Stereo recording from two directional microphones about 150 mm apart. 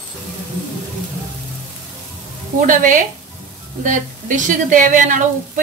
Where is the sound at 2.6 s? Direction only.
60° right (ahead or behind).